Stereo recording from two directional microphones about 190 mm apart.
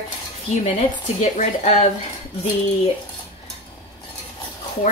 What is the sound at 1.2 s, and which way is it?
Speech, 35° left (ahead or behind).